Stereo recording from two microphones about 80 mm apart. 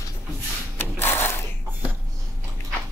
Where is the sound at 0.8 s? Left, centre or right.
Left.